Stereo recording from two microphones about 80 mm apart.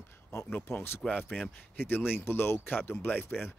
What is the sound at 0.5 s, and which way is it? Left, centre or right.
Speech, left.